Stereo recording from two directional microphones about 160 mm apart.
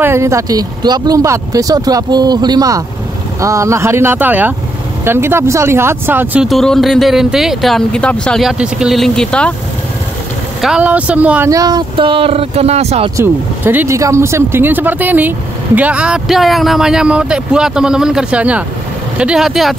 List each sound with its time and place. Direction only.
0.0 s speech: 15° right (ahead or behind)
6.4 s speech: centre (ahead or behind)
10.6 s speech: 5° right (ahead or behind)
11.5 s speech: 25° right (ahead or behind); by 13.1 s 40° right (ahead or behind)
13.1 s speech: 15° right (ahead or behind)